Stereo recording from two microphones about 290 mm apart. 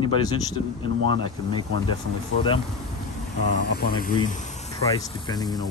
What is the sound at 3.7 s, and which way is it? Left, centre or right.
Speech, left.